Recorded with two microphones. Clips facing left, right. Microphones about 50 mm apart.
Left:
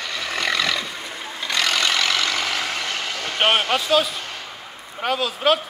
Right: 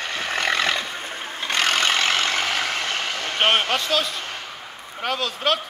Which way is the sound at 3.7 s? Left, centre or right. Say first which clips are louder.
Left 3 dB; centre.